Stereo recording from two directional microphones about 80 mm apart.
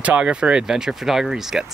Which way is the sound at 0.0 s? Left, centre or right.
Centre.